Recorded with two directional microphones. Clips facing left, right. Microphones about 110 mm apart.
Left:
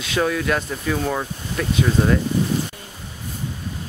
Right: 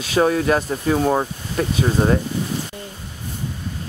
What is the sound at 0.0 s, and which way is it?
Speech, 35° right (ahead or behind).